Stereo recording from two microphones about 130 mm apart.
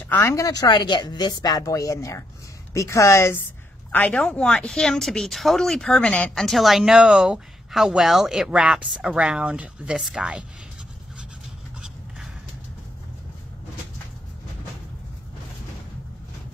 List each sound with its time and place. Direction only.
0.0 s speech: 20° left (ahead or behind); by 10.4 s 5° right (ahead or behind)